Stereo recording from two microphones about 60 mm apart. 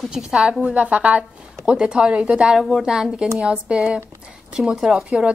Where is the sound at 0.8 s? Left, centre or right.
Right.